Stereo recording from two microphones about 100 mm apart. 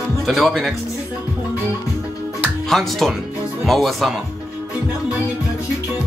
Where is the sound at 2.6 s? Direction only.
Centre (ahead or behind).